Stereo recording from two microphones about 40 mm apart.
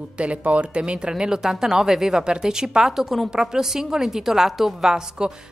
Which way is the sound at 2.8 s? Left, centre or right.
Centre.